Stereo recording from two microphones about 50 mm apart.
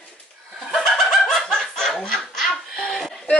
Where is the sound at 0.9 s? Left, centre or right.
Centre.